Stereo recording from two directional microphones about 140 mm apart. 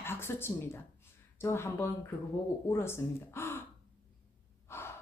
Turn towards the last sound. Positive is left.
turn(degrees=15)  # may be behind; listen again after turning